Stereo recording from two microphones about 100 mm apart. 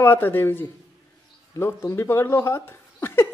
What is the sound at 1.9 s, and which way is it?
Speech, 25° left (ahead or behind).